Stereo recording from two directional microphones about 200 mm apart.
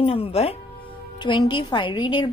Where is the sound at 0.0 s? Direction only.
30° left (ahead or behind).